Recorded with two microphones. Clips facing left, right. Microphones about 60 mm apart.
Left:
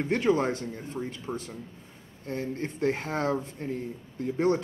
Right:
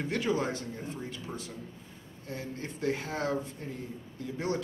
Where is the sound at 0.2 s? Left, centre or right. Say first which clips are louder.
Left 5 dB; left.